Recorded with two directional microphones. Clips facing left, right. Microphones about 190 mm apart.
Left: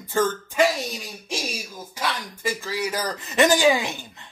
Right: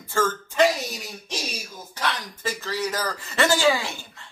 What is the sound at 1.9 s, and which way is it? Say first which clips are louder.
Speech: even; 10° left (ahead or behind).